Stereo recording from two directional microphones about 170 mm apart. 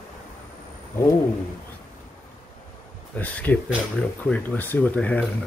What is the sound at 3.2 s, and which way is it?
Speech, 10° left (ahead or behind).